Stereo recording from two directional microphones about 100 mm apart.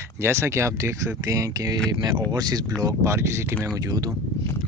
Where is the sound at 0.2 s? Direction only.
25° right (ahead or behind).